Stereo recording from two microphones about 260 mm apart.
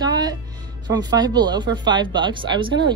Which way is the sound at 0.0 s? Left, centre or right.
Centre.